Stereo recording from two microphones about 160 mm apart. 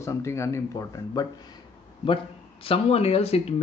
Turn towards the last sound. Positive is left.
turn(degrees=40)  # may be behind; listen again after turning